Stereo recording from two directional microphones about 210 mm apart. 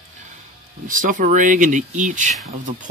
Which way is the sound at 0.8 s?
40° right (ahead or behind).